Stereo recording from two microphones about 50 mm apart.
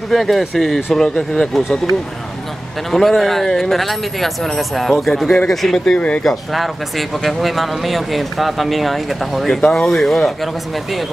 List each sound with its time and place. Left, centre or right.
0.1 s speech: centre
2.9 s speech: centre
5.9 s speech: left
6.2 s speech: centre